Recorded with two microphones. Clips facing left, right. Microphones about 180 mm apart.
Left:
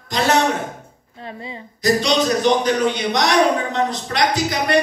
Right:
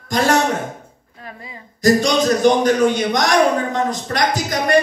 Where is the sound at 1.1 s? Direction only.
25° left (ahead or behind).